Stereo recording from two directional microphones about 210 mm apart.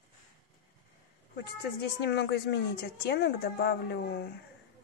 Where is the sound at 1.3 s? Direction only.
50° left (ahead or behind).